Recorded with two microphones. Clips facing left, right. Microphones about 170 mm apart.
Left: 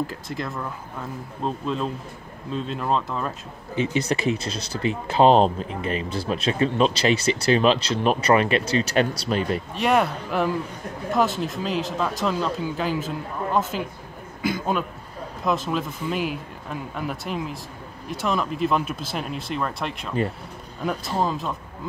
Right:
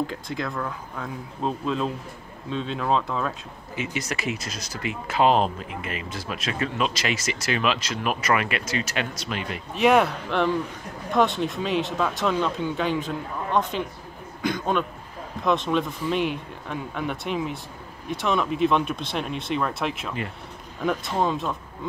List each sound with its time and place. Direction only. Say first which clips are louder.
0.0 s speech: even; centre (ahead or behind)
3.7 s speech: left 7 dB; 30° left (ahead or behind)
9.8 s speech: right 3 dB; centre (ahead or behind)